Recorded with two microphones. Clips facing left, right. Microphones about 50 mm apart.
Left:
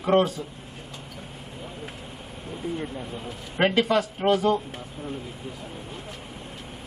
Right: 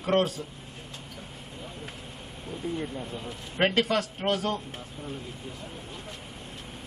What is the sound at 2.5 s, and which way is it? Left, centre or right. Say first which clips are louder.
Speech: left 1 dB; centre.